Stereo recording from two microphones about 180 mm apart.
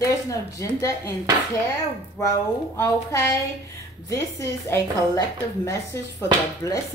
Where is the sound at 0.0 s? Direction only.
15° left (ahead or behind).